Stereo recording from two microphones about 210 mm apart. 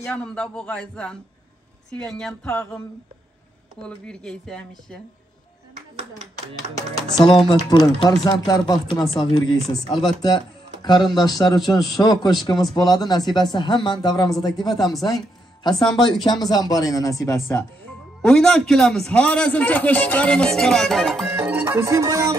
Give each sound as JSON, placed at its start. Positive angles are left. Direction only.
{"t": 0.0, "sound": "a man's voice", "side_deg": 5}
{"t": 3.8, "sound": "a man's voice", "side_deg": 5}
{"t": 5.8, "sound": "a sound", "side_deg": -30}
{"t": 7.0, "sound": "speech", "side_deg": 20}
{"t": 15.0, "sound": "music", "side_deg": 20}
{"t": 15.8, "sound": "a man's voice", "side_deg": 20}